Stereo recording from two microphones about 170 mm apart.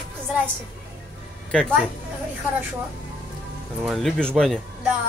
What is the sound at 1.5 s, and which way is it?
Speech, 5° left (ahead or behind).